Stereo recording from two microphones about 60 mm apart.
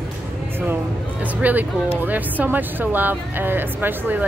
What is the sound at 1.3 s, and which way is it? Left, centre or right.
Speech, right.